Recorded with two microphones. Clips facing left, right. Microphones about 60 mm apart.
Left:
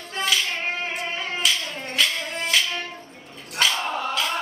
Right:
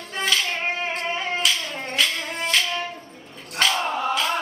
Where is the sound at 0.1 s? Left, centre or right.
Centre.